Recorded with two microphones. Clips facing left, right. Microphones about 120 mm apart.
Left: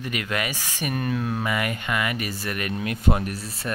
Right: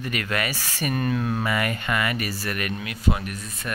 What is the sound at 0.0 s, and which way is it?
Speech, 15° left (ahead or behind).